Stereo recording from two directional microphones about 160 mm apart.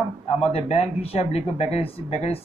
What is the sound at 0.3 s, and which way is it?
A man's voice, 40° left (ahead or behind).